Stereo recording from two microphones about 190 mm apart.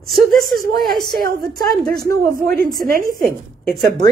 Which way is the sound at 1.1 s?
50° right (ahead or behind).